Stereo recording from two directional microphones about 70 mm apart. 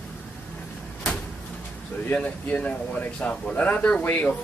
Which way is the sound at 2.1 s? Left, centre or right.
Left.